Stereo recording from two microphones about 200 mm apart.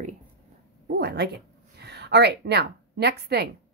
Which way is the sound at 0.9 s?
55° right (ahead or behind).